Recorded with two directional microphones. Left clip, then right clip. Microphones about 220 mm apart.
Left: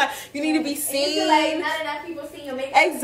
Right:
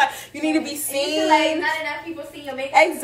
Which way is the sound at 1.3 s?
35° right (ahead or behind).